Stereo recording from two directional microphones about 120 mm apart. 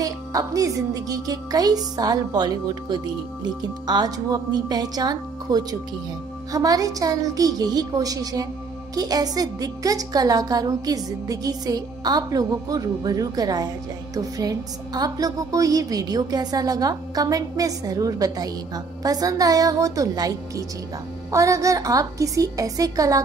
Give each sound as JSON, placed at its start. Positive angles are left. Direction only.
{"t": 0.0, "sound": "a woman's voice", "side_deg": -30}